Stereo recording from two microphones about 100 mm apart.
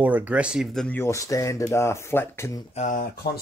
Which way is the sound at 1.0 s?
30° left (ahead or behind).